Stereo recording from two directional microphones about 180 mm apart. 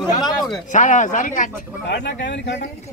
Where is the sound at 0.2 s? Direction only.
20° left (ahead or behind).